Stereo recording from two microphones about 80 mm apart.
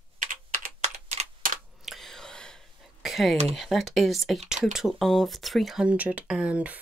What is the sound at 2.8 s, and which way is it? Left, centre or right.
Speech, centre.